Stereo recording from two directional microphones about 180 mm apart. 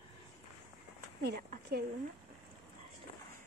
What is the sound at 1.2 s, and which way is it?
Speech, 60° right (ahead or behind).